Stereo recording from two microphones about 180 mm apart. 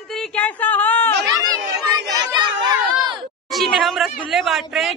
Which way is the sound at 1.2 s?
20° right (ahead or behind).